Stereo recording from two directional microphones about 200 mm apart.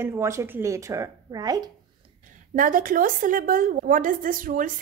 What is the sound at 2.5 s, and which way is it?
A woman's voice, 45° right (ahead or behind).